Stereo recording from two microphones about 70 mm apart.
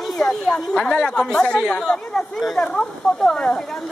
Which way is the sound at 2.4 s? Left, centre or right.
Centre.